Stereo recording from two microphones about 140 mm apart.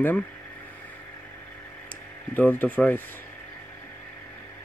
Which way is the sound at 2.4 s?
10° left (ahead or behind).